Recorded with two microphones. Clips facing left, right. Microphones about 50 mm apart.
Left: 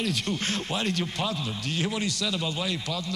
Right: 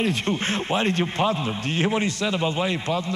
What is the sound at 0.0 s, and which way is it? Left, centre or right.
A man's voice, right.